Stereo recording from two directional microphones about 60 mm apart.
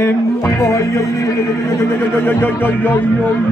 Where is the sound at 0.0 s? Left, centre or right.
Left.